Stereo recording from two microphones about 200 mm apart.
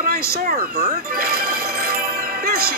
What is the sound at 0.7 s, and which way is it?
Speech, 35° right (ahead or behind).